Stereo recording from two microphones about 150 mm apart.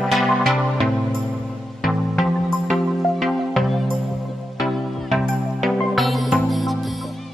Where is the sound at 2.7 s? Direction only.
Centre (ahead or behind).